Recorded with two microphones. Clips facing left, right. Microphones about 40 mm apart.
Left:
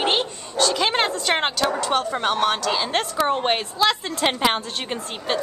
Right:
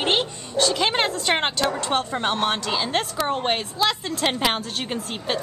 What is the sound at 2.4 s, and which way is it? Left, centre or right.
Speech, centre.